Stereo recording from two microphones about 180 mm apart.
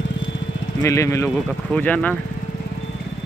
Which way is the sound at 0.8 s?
15° left (ahead or behind).